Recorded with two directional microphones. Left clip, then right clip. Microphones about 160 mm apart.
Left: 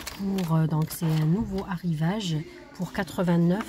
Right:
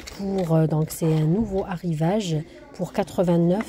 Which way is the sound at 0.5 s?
20° right (ahead or behind).